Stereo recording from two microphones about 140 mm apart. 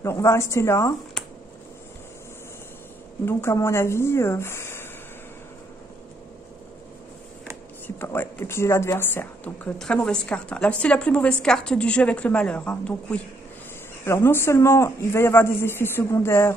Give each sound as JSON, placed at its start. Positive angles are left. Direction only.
{"t": 0.0, "sound": "a man's voice", "side_deg": 20}
{"t": 3.3, "sound": "a man's voice", "side_deg": 20}
{"t": 7.8, "sound": "a woman's voice", "side_deg": 15}